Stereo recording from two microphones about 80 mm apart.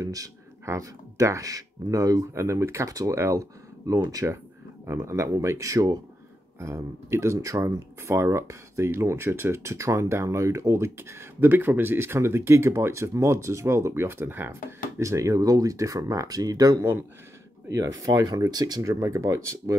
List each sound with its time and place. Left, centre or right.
0.0 s speech: right